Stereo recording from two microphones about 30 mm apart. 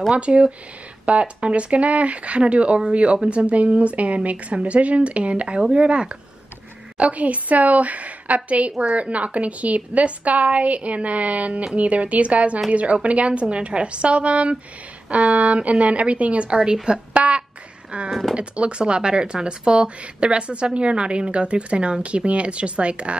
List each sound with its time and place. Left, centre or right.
0.1 s a woman's voice: right
7.0 s a woman's voice: right
17.9 s a woman's voice: right